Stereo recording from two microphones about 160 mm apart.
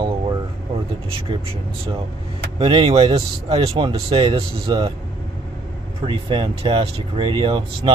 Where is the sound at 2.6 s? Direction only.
35° right (ahead or behind).